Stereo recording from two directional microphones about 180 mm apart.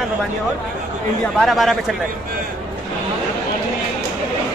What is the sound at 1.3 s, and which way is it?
Speech, centre (ahead or behind).